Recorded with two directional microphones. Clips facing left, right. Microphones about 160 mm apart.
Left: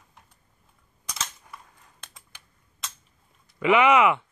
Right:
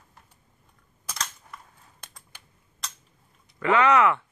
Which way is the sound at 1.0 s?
5° left (ahead or behind).